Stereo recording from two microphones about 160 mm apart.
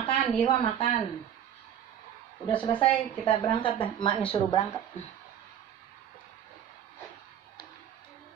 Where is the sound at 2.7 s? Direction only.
30° left (ahead or behind).